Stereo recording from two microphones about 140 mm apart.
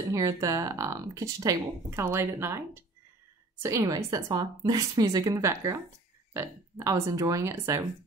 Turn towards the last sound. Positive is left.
turn(degrees=-20)  # may be behind; listen again after turning